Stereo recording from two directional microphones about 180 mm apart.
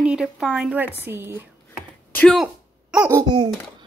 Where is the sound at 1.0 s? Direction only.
15° right (ahead or behind).